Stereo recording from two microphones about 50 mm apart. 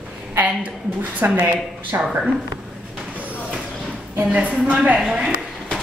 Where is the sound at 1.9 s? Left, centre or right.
Right.